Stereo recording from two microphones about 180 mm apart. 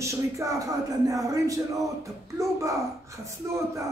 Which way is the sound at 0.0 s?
15° right (ahead or behind).